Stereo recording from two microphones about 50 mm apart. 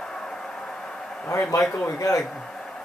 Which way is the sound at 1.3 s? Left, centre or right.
Left.